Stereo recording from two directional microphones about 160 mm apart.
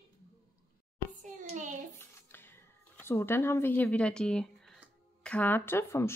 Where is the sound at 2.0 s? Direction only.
15° left (ahead or behind).